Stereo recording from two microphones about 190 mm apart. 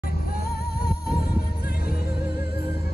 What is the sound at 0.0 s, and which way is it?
Music, 50° left (ahead or behind).